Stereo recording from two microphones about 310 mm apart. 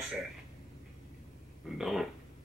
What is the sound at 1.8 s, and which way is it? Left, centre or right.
Speech, centre.